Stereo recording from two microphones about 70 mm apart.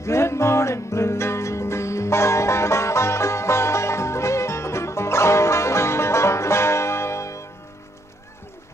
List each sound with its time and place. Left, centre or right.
0.0 s music: left